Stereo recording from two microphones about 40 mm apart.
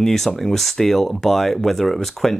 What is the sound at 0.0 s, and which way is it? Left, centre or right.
Speech, centre.